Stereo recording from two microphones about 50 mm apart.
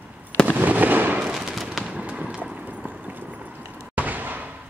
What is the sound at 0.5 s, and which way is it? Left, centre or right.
Fireworks, right.